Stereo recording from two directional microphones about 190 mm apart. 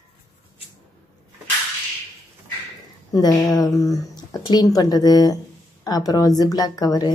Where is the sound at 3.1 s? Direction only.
20° left (ahead or behind).